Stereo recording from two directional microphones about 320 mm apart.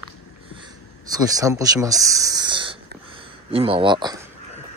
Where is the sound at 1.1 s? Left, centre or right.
Centre.